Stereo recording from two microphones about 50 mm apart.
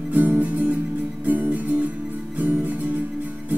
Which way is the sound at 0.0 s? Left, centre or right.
Right.